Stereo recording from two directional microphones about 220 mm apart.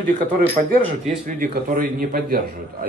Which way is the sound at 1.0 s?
40° right (ahead or behind).